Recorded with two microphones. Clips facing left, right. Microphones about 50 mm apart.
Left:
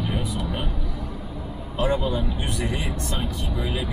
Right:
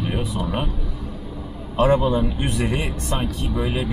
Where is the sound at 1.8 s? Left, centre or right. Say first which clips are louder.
Right 6 dB; right.